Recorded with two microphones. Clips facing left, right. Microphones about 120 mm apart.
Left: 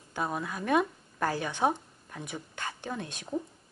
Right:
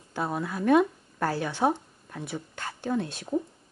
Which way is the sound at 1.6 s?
15° right (ahead or behind).